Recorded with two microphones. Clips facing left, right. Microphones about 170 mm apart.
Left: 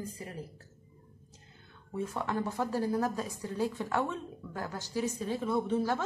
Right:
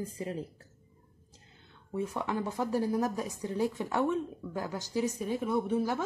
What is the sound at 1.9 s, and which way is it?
Speech, 15° right (ahead or behind).